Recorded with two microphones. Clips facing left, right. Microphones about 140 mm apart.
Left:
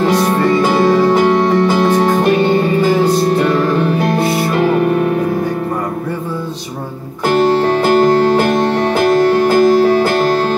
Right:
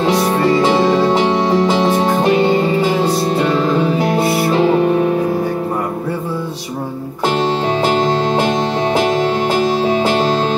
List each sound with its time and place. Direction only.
0.6 s music: 25° right (ahead or behind)
3.5 s music: 20° right (ahead or behind)
7.4 s music: 60° left (ahead or behind)